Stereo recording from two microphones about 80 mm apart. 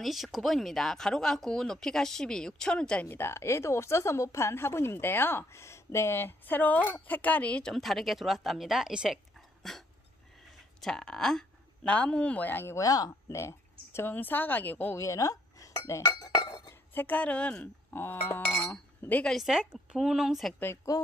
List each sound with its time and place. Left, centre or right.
0.0 s speech: centre
3.1 s a woman's voice: left
7.7 s a woman's voice: centre
9.6 s dog: centre
10.8 s speech: centre; by 12.7 s left
12.7 s speech: left
13.3 s a woman's voice: left
15.0 s speech: left
16.4 s chink: left
16.9 s speech: left
17.9 s a woman's voice: left
19.2 s a woman's voice: centre
19.6 s a woman's voice: centre
20.7 s speech: left